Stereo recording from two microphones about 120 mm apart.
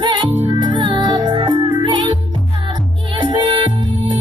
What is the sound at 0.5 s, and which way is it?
Music, 40° right (ahead or behind).